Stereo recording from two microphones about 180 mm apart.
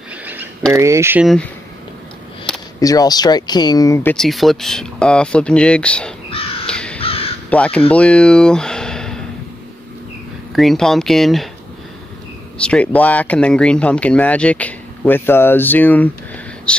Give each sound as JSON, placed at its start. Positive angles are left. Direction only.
{"t": 0.1, "sound": "a sound", "side_deg": -10}
{"t": 0.7, "sound": "speech", "side_deg": -15}
{"t": 1.2, "sound": "speech", "side_deg": 0}
{"t": 2.8, "sound": "speech", "side_deg": 20}
{"t": 6.3, "sound": "crow", "side_deg": 30}
{"t": 6.7, "sound": "crow", "side_deg": 5}
{"t": 7.0, "sound": "crow", "side_deg": 30}
{"t": 7.4, "sound": "speech", "side_deg": 5}
{"t": 10.5, "sound": "speech", "side_deg": 0}
{"t": 12.5, "sound": "speech", "side_deg": 5}